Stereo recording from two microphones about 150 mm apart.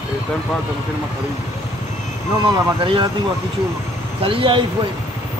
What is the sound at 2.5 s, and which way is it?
Speech, 35° right (ahead or behind).